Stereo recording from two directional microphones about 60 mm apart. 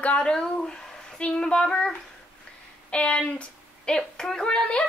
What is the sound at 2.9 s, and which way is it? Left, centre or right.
A woman's voice, centre.